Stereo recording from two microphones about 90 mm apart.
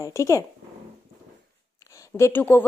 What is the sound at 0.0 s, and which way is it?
Speech, 35° left (ahead or behind).